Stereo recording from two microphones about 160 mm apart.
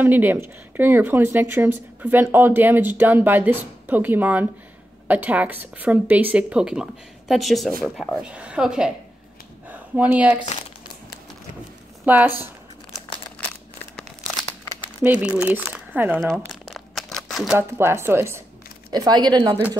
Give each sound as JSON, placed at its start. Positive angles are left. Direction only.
{"t": 0.0, "sound": "speech", "side_deg": -10}
{"t": 12.0, "sound": "speech", "side_deg": -10}
{"t": 15.0, "sound": "speech", "side_deg": -5}
{"t": 16.3, "sound": "crumpling", "side_deg": 0}
{"t": 17.6, "sound": "speech", "side_deg": -15}